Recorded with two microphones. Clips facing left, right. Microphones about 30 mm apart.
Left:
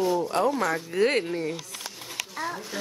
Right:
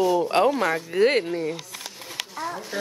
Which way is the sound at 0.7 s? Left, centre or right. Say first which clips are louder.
Right 3 dB; centre.